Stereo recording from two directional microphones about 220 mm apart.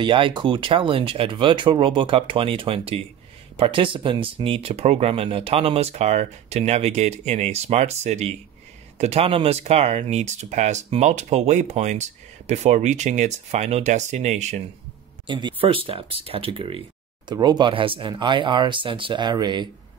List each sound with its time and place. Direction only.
0.0 s speech: 20° right (ahead or behind)
15.2 s speech: 20° right (ahead or behind)